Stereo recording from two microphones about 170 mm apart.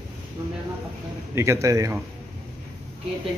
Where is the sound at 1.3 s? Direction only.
15° right (ahead or behind).